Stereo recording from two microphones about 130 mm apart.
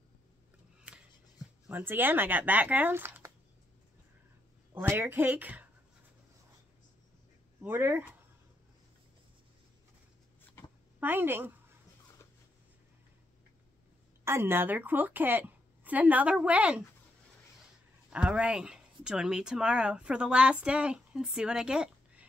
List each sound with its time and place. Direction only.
1.7 s speech: 15° right (ahead or behind)
4.7 s speech: 20° right (ahead or behind)
7.6 s speech: 15° right (ahead or behind)
11.0 s speech: 15° right (ahead or behind)
14.2 s speech: 20° right (ahead or behind)
18.1 s speech: 10° right (ahead or behind)